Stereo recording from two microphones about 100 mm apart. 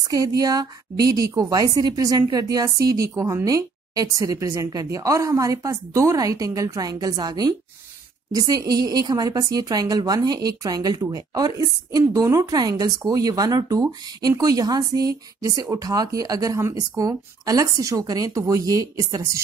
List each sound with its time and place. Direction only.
0.1 s speech: 35° right (ahead or behind)